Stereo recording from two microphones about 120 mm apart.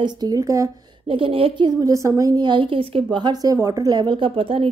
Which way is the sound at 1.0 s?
50° right (ahead or behind).